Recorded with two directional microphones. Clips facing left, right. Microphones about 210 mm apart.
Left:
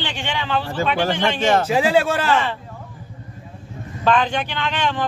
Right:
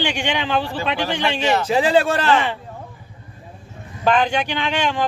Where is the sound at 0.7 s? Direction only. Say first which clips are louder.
Left 2 dB; 45° left (ahead or behind).